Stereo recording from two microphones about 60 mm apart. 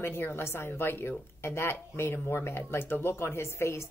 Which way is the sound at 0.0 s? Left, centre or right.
Left.